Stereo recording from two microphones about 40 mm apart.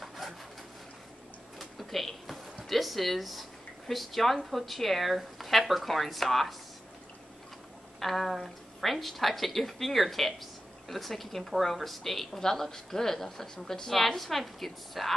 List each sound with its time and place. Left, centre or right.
1.6 s a sound: centre
2.7 s a woman's voice: centre
8.0 s a woman's voice: centre